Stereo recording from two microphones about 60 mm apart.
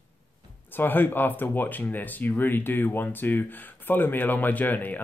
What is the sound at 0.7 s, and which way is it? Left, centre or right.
Speech, left.